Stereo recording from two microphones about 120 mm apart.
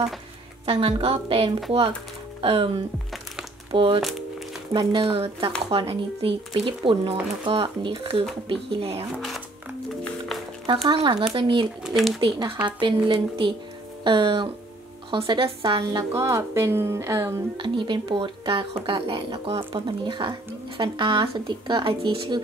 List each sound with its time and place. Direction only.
0.7 s speech: 50° right (ahead or behind)
11.0 s speech: 45° right (ahead or behind)
11.8 s speech: centre (ahead or behind)
12.2 s speech: 45° right (ahead or behind)
16.1 s speech: 25° right (ahead or behind)
17.6 s speech: 40° right (ahead or behind)
19.7 s speech: 45° right (ahead or behind)